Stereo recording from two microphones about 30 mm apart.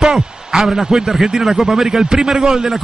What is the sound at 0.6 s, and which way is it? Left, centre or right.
A man's voice, centre.